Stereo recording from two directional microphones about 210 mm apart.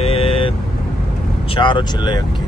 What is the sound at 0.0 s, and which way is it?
Vehicle, 25° left (ahead or behind).